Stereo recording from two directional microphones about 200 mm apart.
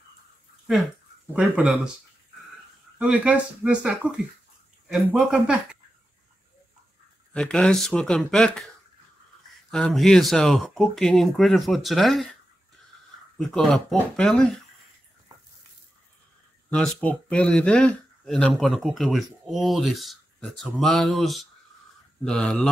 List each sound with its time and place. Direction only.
0.7 s speech: 5° right (ahead or behind)
3.0 s speech: 5° right (ahead or behind)
7.3 s speech: 5° left (ahead or behind)
9.7 s speech: 5° left (ahead or behind)
13.4 s speech: centre (ahead or behind)
16.7 s speech: 5° left (ahead or behind)